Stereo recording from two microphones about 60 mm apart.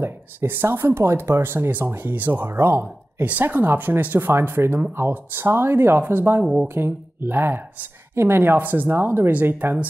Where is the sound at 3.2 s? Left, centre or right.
Right.